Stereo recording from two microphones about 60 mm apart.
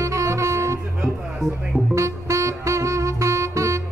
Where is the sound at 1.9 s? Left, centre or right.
Right.